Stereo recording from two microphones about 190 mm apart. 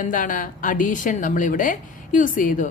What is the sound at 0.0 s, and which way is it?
A woman's voice, 45° left (ahead or behind).